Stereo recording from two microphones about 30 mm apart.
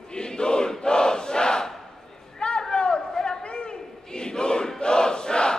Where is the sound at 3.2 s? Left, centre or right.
Left.